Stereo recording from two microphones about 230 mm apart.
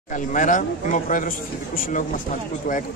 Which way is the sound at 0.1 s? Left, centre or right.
Left.